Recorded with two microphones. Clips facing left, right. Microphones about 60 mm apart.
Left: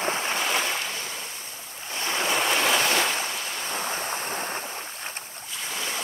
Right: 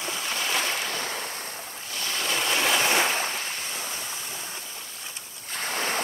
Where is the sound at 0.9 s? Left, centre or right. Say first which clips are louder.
Right 3 dB; right.